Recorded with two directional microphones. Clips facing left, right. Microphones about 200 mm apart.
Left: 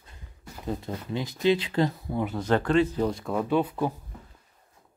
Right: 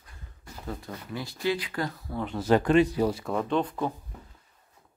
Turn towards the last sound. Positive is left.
turn(degrees=10)  # may be behind; listen again after turning